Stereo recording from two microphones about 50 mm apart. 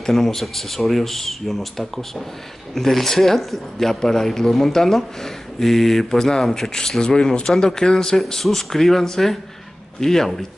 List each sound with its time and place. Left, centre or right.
0.0 s speech: centre